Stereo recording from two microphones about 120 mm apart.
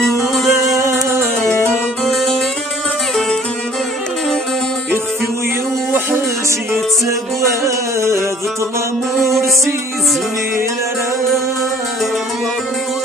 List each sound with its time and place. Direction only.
0.5 s music: 25° right (ahead or behind)
2.0 s music: centre (ahead or behind)
6.7 s music: 25° right (ahead or behind)
9.2 s music: 25° right (ahead or behind)